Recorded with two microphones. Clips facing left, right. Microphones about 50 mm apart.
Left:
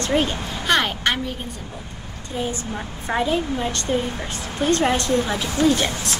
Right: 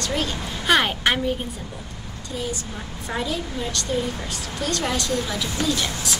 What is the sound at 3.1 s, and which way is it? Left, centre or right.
Speech, left.